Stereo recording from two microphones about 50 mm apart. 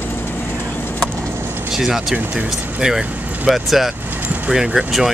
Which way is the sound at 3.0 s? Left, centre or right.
Right.